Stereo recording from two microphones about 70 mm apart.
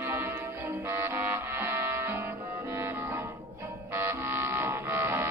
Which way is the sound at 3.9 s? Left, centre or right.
Right.